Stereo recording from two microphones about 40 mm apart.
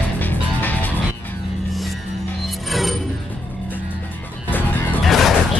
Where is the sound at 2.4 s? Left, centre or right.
Centre.